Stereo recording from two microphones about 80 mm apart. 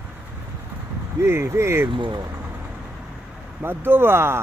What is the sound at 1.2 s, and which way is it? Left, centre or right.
Speech, right.